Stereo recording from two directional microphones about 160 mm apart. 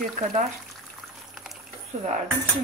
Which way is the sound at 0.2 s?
50° right (ahead or behind).